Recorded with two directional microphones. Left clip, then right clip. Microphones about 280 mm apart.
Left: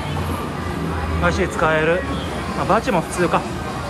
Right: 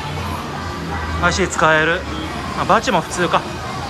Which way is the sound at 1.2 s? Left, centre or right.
Centre.